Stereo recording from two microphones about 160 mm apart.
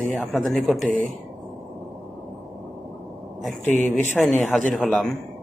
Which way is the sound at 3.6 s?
50° right (ahead or behind).